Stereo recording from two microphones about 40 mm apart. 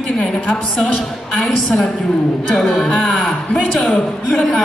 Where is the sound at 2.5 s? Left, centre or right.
Centre.